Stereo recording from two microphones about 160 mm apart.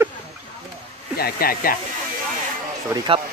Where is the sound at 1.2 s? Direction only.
70° left (ahead or behind).